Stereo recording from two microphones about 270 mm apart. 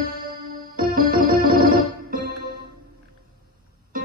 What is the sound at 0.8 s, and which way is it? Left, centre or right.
Keyboard, right.